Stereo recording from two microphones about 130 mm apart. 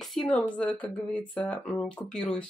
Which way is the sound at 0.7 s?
10° left (ahead or behind).